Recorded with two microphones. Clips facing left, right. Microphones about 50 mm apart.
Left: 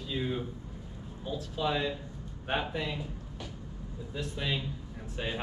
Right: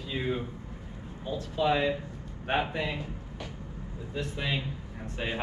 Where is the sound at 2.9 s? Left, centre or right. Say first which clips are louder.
Right 2 dB; right.